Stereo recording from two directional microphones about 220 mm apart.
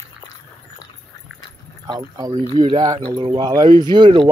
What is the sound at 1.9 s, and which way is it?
Speech, 15° right (ahead or behind).